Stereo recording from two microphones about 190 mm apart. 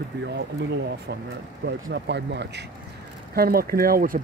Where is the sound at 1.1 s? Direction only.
55° right (ahead or behind).